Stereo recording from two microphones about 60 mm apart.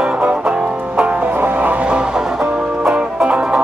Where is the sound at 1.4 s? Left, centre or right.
Right.